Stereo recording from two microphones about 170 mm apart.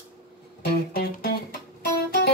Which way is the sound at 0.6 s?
60° left (ahead or behind).